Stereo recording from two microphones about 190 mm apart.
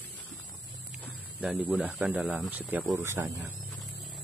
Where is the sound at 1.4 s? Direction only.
5° right (ahead or behind).